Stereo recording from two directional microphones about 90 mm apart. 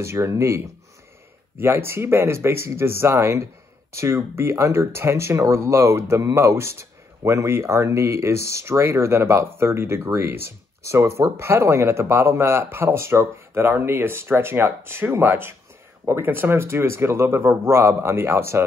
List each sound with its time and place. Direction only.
0.0 s speech: 30° right (ahead or behind)